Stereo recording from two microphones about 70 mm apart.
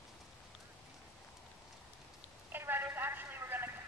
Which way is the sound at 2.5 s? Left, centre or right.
Right.